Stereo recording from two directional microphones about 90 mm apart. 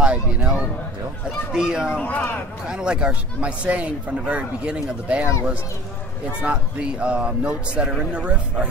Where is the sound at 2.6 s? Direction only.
10° right (ahead or behind).